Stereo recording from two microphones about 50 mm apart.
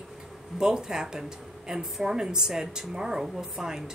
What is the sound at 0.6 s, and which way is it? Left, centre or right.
A woman's voice, centre.